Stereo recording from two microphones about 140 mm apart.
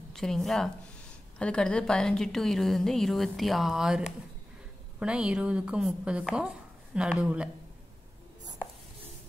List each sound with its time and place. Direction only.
0.1 s a woman's voice: 5° left (ahead or behind)